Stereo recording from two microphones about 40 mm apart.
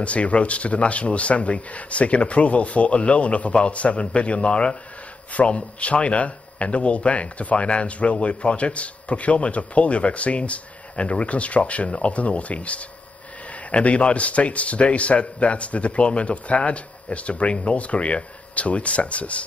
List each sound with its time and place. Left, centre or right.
0.0 s a man's voice: left